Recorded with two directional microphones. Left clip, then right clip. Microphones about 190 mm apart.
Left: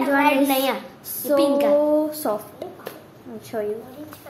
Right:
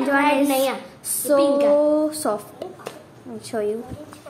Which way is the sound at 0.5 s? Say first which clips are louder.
Right 1 dB; 35° left (ahead or behind).